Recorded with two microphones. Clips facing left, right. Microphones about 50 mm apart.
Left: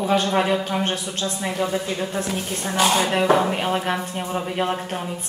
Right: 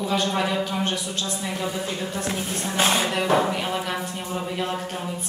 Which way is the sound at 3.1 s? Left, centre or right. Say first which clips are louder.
Left 3 dB; left.